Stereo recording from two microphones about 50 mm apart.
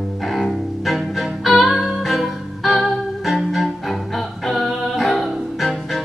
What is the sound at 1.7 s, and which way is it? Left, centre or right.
Music, centre.